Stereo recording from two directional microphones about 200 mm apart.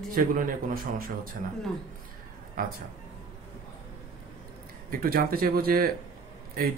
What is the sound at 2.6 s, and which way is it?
Speech, 45° right (ahead or behind).